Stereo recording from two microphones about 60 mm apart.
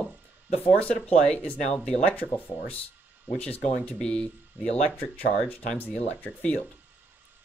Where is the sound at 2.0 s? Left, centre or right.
Left.